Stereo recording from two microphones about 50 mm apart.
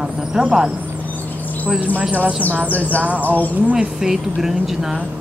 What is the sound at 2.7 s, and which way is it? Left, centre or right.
Speech, left.